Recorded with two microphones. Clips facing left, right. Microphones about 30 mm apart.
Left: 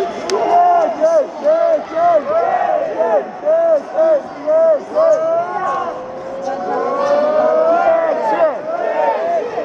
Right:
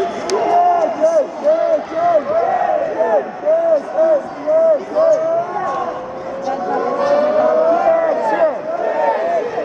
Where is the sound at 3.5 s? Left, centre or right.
Centre.